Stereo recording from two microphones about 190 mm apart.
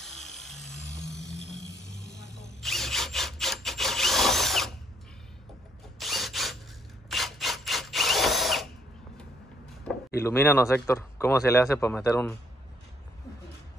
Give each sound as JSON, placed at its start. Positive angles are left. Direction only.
{"t": 0.0, "sound": "tools", "side_deg": 0}
{"t": 1.3, "sound": "music", "side_deg": 0}
{"t": 1.7, "sound": "music", "side_deg": -15}
{"t": 2.2, "sound": "a sound", "side_deg": 40}
{"t": 2.6, "sound": "sawing", "side_deg": 0}
{"t": 5.9, "sound": "tools", "side_deg": 0}
{"t": 7.1, "sound": "drill", "side_deg": 0}
{"t": 9.8, "sound": "speech", "side_deg": 15}